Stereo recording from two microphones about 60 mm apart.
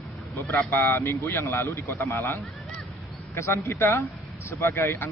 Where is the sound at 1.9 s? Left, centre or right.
Left.